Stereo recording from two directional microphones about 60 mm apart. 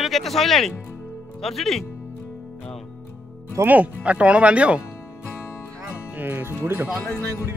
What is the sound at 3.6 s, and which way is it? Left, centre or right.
Speech, right.